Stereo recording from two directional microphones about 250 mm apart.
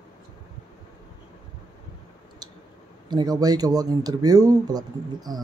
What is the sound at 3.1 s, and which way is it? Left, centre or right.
Speech, centre.